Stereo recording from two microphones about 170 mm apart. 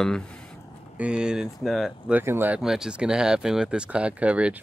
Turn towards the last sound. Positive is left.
turn(degrees=-5)  # may be behind; listen again after turning